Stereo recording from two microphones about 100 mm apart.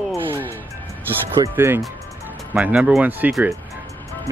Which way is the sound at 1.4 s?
25° right (ahead or behind).